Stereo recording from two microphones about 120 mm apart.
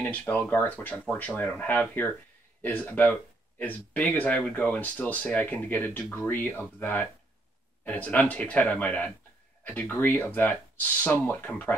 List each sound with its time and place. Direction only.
0.0 s speech: 10° left (ahead or behind)